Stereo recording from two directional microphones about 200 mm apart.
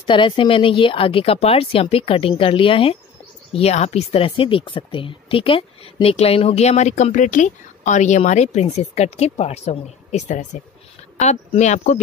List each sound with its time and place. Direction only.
0.0 s a woman's voice: 25° left (ahead or behind)